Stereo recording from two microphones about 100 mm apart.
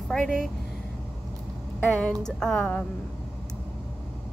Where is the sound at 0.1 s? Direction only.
5° left (ahead or behind).